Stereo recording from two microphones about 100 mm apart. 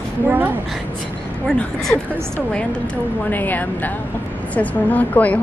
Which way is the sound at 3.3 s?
20° left (ahead or behind).